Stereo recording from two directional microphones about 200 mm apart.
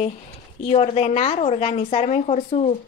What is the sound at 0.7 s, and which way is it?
Speech, 30° left (ahead or behind).